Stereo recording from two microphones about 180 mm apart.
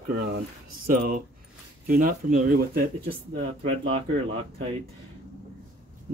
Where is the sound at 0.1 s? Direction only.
60° right (ahead or behind).